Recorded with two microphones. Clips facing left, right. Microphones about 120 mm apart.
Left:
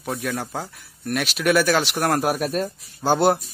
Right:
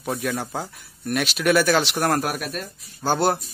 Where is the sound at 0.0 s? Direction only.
Centre (ahead or behind).